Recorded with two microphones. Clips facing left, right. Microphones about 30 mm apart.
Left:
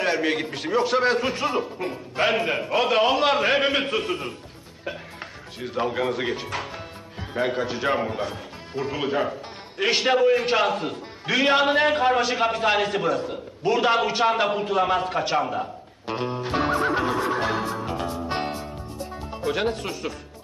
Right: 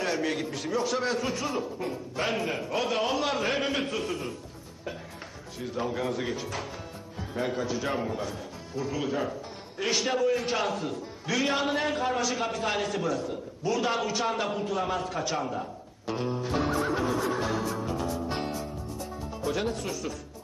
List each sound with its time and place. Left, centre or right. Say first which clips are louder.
0.0 s a man's voice: left 6 dB; left
5.6 s a man's voice: left 6 dB; left
18.3 s music: left 4 dB; left